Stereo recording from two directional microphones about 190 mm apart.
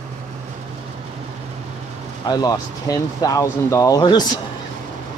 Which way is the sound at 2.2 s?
20° left (ahead or behind).